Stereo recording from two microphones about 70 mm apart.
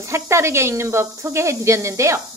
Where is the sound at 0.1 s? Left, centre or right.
Right.